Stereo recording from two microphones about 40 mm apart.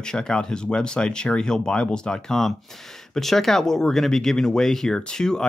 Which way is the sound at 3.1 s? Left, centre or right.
Centre.